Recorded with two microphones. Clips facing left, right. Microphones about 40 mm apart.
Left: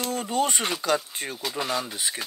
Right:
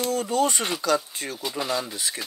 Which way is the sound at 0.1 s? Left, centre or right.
Left.